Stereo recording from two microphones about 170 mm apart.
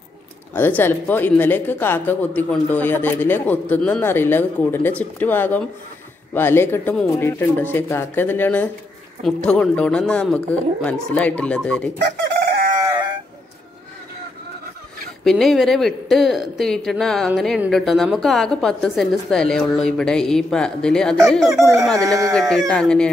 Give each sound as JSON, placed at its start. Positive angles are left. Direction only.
{"t": 0.6, "sound": "a woman's voice", "side_deg": 10}
{"t": 12.2, "sound": "chicken", "side_deg": -65}
{"t": 12.8, "sound": "a sound", "side_deg": -10}
{"t": 15.2, "sound": "a woman's voice", "side_deg": 0}